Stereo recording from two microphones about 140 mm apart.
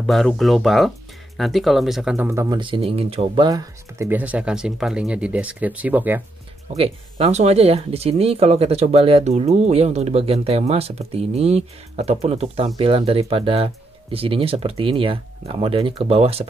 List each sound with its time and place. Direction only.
0.0 s speech: 5° left (ahead or behind)
2.1 s speech: 15° right (ahead or behind)
2.5 s speech: 35° right (ahead or behind)
3.4 s speech: 30° right (ahead or behind)
4.1 s speech: 10° right (ahead or behind)
6.8 s speech: 50° right (ahead or behind)